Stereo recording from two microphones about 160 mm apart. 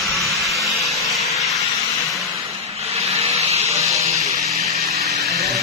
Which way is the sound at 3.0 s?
40° right (ahead or behind).